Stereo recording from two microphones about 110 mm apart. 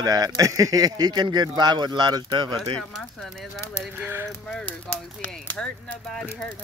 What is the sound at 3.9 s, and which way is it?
Speech, 20° right (ahead or behind).